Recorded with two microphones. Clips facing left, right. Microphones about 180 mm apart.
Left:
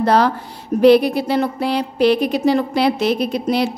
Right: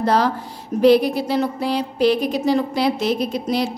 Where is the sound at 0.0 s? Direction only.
65° left (ahead or behind).